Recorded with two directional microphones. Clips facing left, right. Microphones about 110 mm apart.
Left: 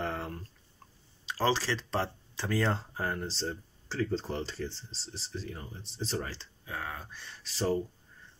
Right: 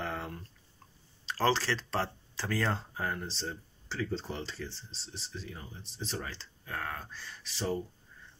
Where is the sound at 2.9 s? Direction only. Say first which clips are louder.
Left 2 dB; 30° left (ahead or behind).